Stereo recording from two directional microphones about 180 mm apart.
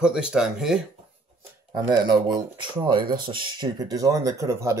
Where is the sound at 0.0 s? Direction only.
5° right (ahead or behind).